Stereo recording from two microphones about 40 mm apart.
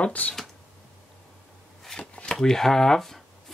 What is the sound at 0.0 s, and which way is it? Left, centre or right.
Speech, left.